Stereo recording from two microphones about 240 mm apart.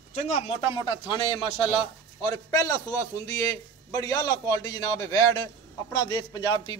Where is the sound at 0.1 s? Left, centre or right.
Left.